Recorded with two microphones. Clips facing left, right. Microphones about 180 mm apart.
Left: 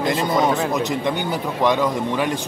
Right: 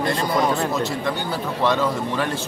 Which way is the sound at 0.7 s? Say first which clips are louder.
Left 2 dB; 20° left (ahead or behind).